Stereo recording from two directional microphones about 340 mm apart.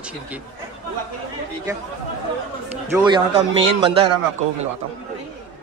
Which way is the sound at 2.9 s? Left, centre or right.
Centre.